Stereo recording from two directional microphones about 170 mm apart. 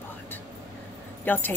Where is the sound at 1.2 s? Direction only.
10° left (ahead or behind).